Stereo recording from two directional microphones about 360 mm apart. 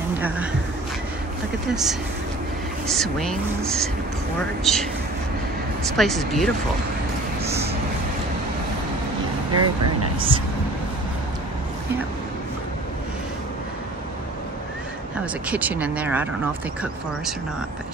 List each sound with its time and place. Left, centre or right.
0.2 s speech: centre
1.7 s speech: centre
5.9 s speech: centre
7.4 s vehicle: centre
9.5 s speech: right
15.4 s speech: centre